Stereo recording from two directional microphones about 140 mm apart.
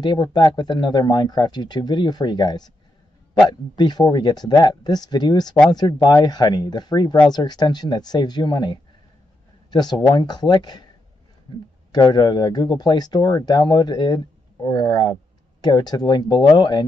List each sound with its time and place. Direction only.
0.0 s speech: 30° left (ahead or behind)
11.9 s speech: 30° left (ahead or behind)